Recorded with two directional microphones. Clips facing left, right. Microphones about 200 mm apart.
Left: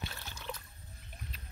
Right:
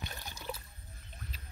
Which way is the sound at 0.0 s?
15° right (ahead or behind).